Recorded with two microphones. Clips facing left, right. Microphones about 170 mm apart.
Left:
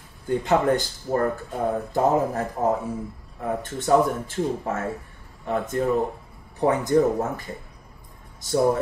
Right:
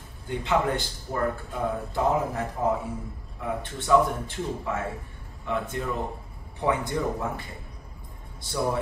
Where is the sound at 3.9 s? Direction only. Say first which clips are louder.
Left 2 dB; 45° left (ahead or behind).